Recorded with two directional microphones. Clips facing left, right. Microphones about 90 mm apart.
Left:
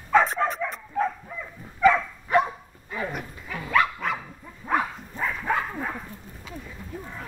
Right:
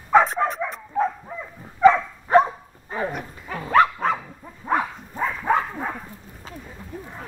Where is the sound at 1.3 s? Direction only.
30° right (ahead or behind).